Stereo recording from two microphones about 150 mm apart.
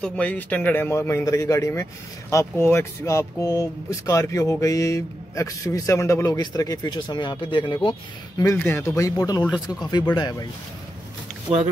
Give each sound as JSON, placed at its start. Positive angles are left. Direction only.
{"t": 0.0, "sound": "a man's voice", "side_deg": 10}
{"t": 8.4, "sound": "speech", "side_deg": 20}